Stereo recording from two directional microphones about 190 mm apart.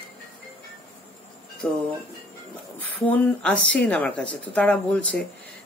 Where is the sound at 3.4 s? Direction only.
5° left (ahead or behind).